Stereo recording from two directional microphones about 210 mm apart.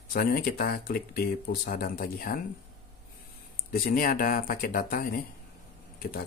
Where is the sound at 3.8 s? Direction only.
45° left (ahead or behind).